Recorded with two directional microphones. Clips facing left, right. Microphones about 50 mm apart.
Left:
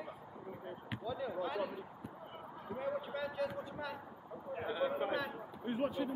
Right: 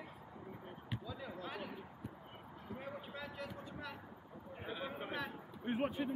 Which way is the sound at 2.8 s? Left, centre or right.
Centre.